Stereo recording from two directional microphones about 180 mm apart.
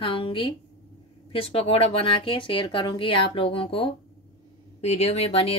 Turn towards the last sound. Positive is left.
turn(degrees=35)  # may be behind; listen again after turning